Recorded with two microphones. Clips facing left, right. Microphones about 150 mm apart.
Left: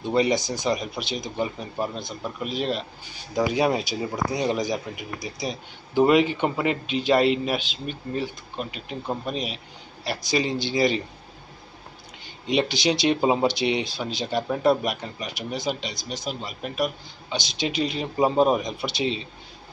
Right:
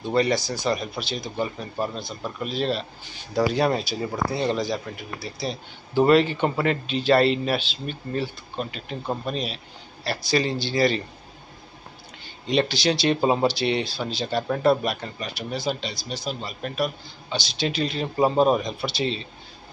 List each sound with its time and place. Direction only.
0.0 s speech: 20° left (ahead or behind)
12.4 s speech: 15° left (ahead or behind)